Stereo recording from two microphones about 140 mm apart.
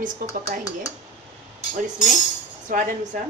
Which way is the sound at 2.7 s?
75° right (ahead or behind).